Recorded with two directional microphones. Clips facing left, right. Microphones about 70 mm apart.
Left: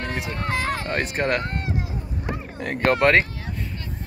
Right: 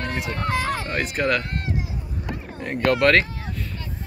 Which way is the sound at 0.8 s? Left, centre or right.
Left.